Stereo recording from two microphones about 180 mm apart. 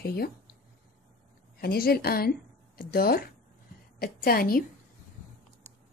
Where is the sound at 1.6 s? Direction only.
55° left (ahead or behind).